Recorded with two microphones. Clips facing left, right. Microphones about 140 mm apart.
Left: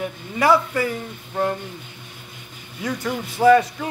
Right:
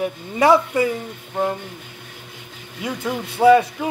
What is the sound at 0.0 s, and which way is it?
Speech, 20° right (ahead or behind).